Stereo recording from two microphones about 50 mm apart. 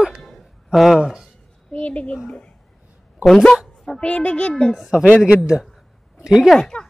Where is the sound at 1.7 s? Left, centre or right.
Left.